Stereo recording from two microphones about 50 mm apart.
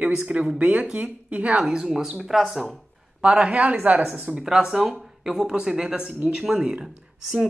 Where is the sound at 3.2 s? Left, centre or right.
Centre.